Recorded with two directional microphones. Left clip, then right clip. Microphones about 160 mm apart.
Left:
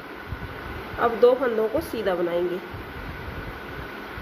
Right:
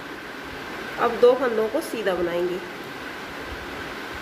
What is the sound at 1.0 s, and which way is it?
Speech, 10° left (ahead or behind).